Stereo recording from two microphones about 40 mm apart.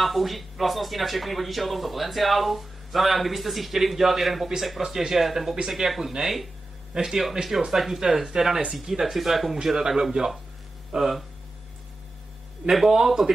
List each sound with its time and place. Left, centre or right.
0.0 s speech: centre
6.9 s a man's voice: centre
7.7 s speech: centre
9.8 s speech: centre
12.6 s speech: centre